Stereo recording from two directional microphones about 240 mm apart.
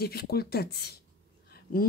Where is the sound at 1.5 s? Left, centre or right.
Left.